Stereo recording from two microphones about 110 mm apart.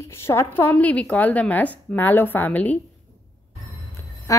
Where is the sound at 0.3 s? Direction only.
20° left (ahead or behind).